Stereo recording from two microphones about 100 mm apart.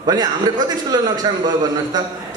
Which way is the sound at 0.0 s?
40° right (ahead or behind).